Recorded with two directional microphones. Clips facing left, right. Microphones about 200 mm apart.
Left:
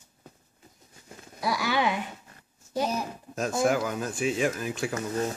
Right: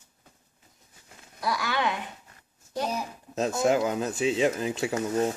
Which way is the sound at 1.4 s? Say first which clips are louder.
Left 2 dB; 10° left (ahead or behind).